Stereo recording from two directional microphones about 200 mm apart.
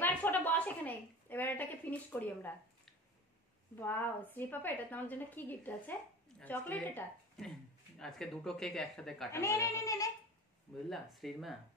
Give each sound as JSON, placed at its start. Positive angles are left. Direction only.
{"t": 0.0, "sound": "a woman's voice", "side_deg": 10}
{"t": 9.3, "sound": "a woman's voice", "side_deg": 15}
{"t": 10.9, "sound": "speech", "side_deg": 0}